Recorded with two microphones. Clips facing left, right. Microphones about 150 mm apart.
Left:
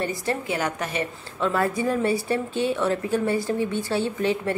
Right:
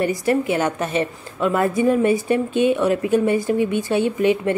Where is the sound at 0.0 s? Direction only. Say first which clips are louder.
Right 8 dB; 20° right (ahead or behind).